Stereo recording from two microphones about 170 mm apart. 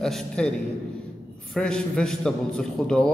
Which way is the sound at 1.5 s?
5° left (ahead or behind).